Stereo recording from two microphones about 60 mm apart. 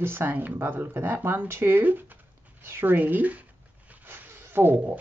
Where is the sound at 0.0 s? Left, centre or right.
Right.